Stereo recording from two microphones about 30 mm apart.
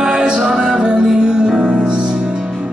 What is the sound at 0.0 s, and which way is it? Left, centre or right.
Music, right.